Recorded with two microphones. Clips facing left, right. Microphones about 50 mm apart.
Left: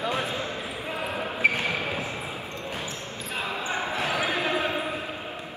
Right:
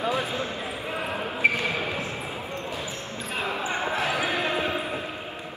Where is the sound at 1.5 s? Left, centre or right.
Left.